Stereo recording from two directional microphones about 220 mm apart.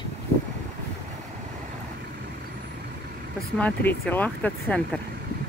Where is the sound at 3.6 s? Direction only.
10° left (ahead or behind).